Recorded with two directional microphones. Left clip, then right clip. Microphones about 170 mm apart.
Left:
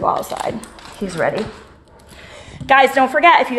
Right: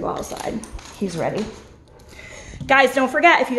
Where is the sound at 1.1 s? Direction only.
10° right (ahead or behind).